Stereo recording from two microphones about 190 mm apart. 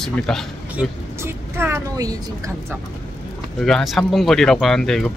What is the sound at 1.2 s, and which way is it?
Speech, 15° right (ahead or behind).